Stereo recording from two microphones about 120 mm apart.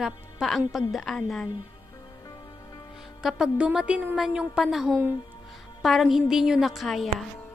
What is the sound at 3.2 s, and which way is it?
A woman's voice, 5° right (ahead or behind).